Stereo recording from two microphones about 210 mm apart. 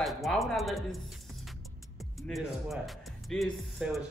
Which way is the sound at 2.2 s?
Centre (ahead or behind).